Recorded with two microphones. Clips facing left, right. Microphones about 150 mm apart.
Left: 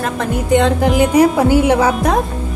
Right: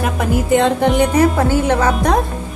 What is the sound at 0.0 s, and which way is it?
Speech, 5° right (ahead or behind).